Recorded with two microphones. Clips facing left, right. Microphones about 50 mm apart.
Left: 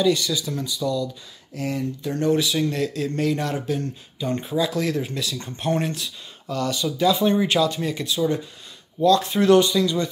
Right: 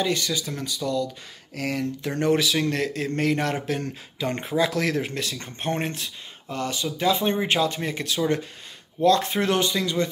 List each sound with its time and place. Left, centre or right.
0.0 s speech: right
9.0 s speech: right